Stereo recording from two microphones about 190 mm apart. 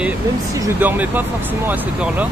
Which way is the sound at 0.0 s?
15° right (ahead or behind).